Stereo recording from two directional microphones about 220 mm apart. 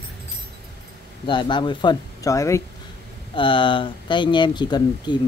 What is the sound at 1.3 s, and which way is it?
Speech, 20° left (ahead or behind).